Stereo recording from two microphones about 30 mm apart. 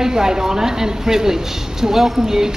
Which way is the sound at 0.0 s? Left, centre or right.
Right.